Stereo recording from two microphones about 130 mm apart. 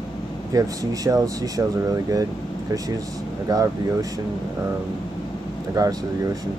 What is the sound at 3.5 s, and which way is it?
Speech, 25° right (ahead or behind).